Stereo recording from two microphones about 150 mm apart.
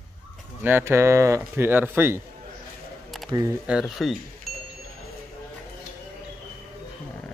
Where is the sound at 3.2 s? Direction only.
25° right (ahead or behind).